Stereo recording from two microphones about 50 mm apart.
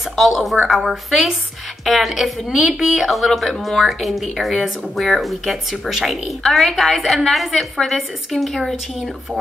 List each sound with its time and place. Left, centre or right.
0.1 s a woman's voice: centre